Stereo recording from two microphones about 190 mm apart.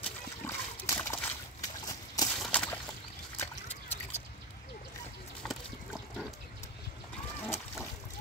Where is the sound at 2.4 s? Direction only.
5° left (ahead or behind).